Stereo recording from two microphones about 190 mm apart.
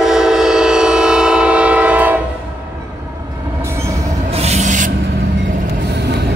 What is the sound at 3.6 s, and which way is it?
Train, 15° right (ahead or behind).